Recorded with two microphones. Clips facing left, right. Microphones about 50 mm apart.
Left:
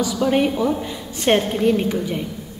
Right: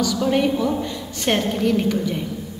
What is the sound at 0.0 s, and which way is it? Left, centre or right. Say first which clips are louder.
A woman's voice: left 1 dB; centre.